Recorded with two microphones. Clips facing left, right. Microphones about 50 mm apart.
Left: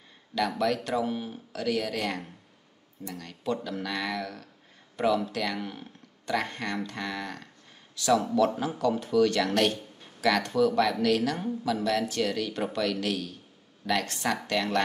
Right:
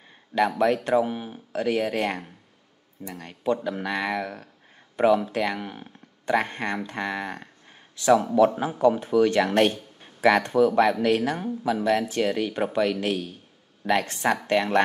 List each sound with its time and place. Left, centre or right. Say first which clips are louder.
0.3 s speech: right 6 dB; right
0.8 s speech: right 6 dB; right
6.2 s speech: right 5 dB; right